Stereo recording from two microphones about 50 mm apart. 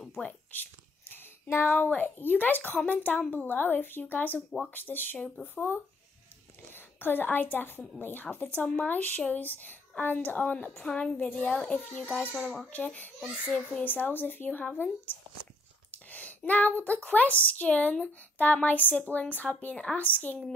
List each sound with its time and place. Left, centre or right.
0.5 s a woman's voice: left; by 11.8 s centre
11.9 s speech: left
12.4 s a child's voice: centre
12.7 s a woman's voice: left